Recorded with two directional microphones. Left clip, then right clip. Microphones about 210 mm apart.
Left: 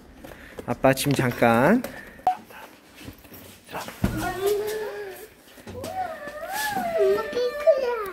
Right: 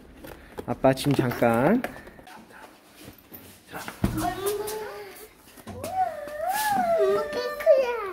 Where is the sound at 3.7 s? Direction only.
10° right (ahead or behind).